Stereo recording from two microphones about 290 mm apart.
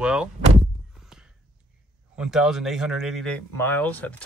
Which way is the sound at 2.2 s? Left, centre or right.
Centre.